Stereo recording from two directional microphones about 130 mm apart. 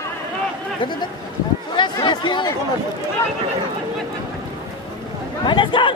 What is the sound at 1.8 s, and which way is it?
Chatter, 35° left (ahead or behind).